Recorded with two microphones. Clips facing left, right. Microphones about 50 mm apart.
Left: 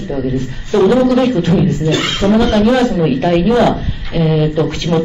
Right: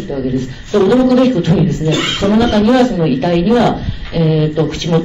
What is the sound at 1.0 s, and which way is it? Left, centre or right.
Speech, centre.